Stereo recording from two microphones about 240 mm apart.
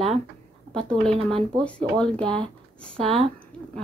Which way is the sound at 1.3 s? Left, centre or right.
Right.